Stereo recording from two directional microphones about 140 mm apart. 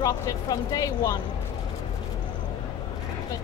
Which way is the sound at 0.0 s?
25° left (ahead or behind).